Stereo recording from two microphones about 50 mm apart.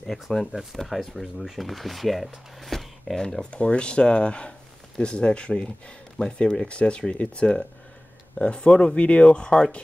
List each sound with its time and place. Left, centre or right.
0.0 s speech: centre
3.2 s speech: centre